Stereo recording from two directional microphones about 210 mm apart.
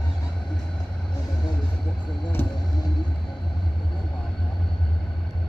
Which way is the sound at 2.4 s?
10° left (ahead or behind).